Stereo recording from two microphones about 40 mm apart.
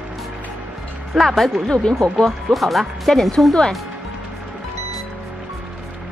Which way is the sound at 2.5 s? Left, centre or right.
Centre.